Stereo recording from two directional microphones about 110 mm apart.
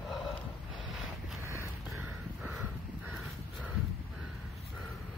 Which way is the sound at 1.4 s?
25° right (ahead or behind).